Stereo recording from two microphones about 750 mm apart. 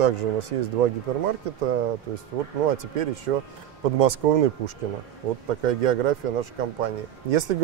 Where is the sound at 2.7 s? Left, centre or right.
Right.